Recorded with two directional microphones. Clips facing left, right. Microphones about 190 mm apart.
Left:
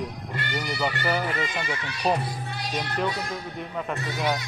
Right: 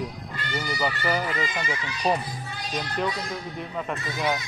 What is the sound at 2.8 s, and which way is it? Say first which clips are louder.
Speech: even; centre (ahead or behind).